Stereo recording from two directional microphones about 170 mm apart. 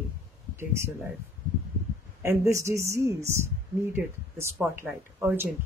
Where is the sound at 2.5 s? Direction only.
15° right (ahead or behind).